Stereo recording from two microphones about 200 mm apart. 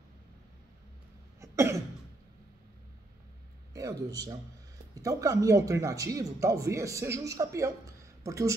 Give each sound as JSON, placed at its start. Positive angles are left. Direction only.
{"t": 1.4, "sound": "cough", "side_deg": -15}
{"t": 3.7, "sound": "a man's voice", "side_deg": -15}